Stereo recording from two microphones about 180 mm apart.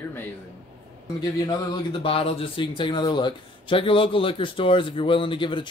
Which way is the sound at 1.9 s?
30° left (ahead or behind).